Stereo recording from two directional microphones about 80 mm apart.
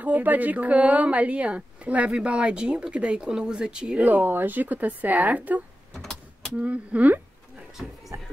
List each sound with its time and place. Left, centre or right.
0.0 s a woman's voice: right
5.9 s vehicle: centre
6.6 s a woman's voice: centre
8.1 s speech: right